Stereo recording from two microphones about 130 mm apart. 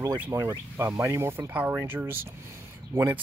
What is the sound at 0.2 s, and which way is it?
Speech, 15° right (ahead or behind).